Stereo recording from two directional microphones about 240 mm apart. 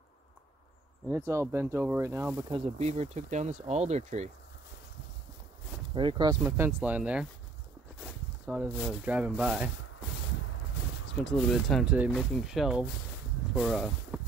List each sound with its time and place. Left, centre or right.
1.0 s speech: centre
2.6 s speech: right
5.9 s speech: centre
11.2 s speech: centre